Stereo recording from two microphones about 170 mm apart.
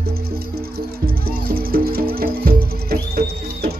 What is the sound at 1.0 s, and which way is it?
Music, 60° right (ahead or behind).